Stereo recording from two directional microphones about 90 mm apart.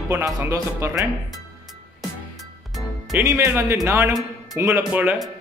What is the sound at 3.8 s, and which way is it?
Speech, 35° right (ahead or behind).